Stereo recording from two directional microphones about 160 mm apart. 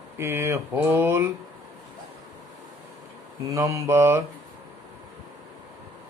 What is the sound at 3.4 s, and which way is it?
Mantra, 20° right (ahead or behind).